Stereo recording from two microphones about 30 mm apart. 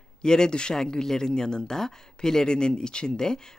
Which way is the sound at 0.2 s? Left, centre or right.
Left.